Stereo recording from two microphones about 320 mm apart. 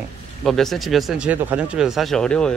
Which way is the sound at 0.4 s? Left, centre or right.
Centre.